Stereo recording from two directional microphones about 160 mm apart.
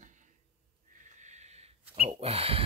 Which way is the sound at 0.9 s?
50° right (ahead or behind).